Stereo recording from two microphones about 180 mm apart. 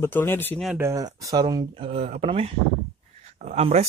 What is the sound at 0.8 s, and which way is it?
Speech, 20° right (ahead or behind).